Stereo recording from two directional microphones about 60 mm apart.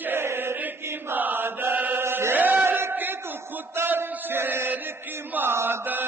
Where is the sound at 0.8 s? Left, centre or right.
Right.